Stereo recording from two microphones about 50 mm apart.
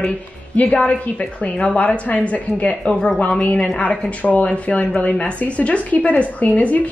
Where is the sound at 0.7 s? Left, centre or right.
Left.